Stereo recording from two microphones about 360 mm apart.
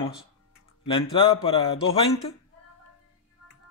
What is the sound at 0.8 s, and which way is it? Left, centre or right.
Speech, centre.